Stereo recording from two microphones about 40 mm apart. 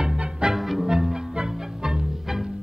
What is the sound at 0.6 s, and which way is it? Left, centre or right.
Music, centre.